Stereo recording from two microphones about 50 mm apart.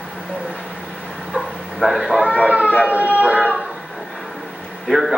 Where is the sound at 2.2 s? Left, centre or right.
Right.